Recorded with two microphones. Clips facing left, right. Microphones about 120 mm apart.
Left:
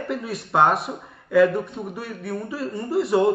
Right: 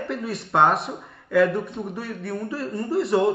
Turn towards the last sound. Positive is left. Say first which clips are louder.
# left 1 dB
turn(degrees=0)  # may be behind; listen again after turning